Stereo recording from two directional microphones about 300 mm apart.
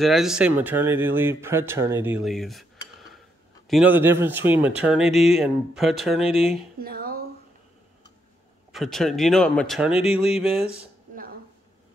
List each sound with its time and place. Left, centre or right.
0.0 s speech: centre
3.6 s speech: centre
6.8 s a sound: right
8.7 s speech: centre